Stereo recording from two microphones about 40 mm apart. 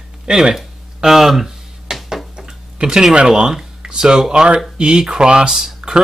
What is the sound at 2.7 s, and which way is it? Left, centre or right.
Speech, centre.